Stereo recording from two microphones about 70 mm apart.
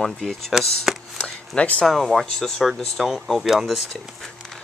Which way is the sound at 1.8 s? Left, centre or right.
Centre.